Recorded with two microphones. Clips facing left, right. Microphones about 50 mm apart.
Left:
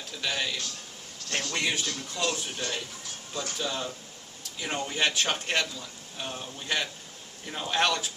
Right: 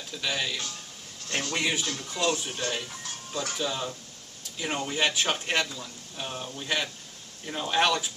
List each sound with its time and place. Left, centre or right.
0.2 s speech: centre